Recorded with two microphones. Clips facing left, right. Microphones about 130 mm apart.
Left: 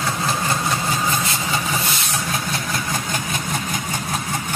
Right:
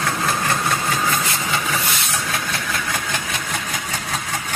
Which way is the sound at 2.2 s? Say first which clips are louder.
Even; 40° left (ahead or behind).